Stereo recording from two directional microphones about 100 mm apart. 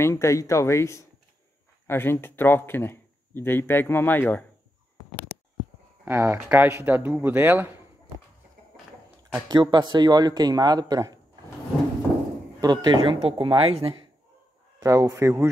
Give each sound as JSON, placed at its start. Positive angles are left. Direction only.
{"t": 0.0, "sound": "speech", "side_deg": 30}
{"t": 6.0, "sound": "speech", "side_deg": -20}
{"t": 9.5, "sound": "speech", "side_deg": -50}
{"t": 12.5, "sound": "speech", "side_deg": -40}
{"t": 12.9, "sound": "speech", "side_deg": -60}
{"t": 14.8, "sound": "speech", "side_deg": -40}